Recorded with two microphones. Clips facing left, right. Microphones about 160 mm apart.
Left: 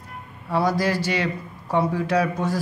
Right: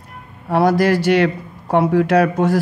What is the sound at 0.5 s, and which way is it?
Speech, 65° right (ahead or behind).